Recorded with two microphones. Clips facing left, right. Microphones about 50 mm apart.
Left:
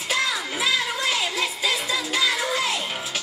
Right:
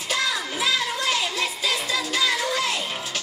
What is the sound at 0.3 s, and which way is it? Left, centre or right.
Music, centre.